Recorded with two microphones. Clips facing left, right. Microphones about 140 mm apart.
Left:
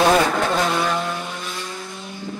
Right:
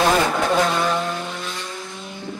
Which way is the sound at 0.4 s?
Centre (ahead or behind).